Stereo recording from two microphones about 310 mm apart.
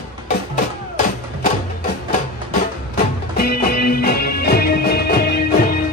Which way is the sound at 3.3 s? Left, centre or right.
Left.